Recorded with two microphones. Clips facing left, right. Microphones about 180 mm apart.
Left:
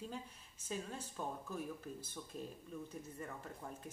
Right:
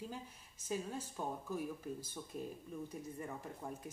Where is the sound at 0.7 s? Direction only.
10° right (ahead or behind).